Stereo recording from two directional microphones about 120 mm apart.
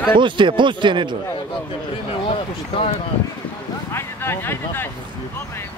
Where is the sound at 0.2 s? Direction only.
40° right (ahead or behind).